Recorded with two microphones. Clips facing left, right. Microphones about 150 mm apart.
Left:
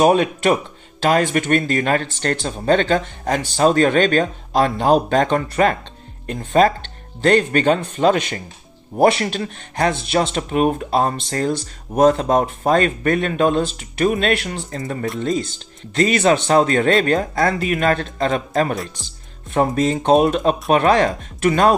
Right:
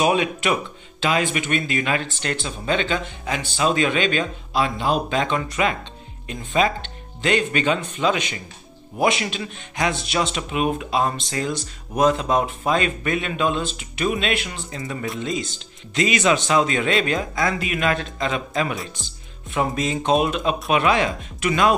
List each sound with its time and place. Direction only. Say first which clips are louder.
0.0 s speech: left 5 dB; 45° left (ahead or behind)
11.1 s speech: left 4 dB; 60° left (ahead or behind)
11.9 s speech: left 4 dB; 35° left (ahead or behind)